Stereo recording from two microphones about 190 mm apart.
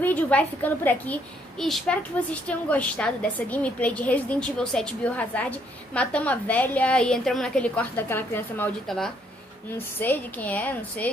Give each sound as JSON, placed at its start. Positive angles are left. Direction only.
{"t": 0.0, "sound": "a woman's voice", "side_deg": 10}